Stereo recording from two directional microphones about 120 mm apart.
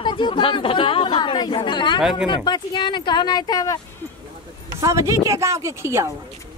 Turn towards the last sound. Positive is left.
turn(degrees=-20)  # may be behind; listen again after turning